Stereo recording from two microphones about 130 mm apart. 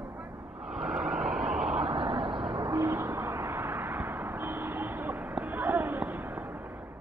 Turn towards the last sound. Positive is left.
turn(degrees=-15)  # may be behind; listen again after turning